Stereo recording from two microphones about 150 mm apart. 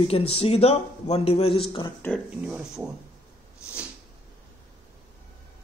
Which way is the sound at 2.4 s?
10° right (ahead or behind).